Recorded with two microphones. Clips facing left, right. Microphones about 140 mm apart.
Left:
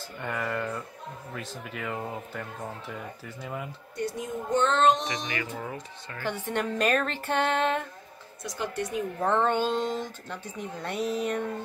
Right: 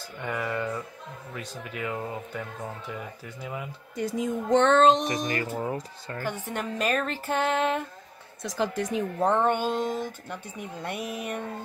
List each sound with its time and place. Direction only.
0.2 s speech: centre (ahead or behind)
3.9 s a child's voice: 90° right
5.0 s speech: 40° right (ahead or behind)
6.2 s speech: 10° right (ahead or behind)
8.5 s a child's voice: 90° right
8.9 s speech: 20° right (ahead or behind)